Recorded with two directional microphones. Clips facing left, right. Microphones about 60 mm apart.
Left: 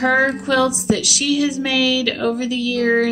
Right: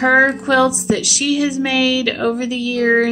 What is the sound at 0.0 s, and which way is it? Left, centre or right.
A woman's voice, right.